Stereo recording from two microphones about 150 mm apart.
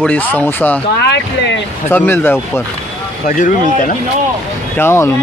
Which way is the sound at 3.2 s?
65° left (ahead or behind).